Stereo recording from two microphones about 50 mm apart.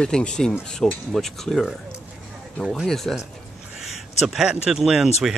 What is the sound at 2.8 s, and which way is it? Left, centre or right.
Speech, centre.